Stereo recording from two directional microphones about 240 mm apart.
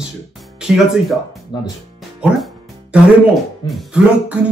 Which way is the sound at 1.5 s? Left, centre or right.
Centre.